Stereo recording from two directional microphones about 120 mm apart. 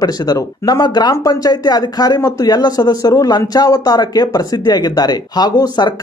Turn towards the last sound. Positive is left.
turn(degrees=35)  # may be behind; listen again after turning